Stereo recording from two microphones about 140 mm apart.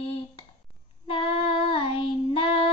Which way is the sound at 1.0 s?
40° left (ahead or behind).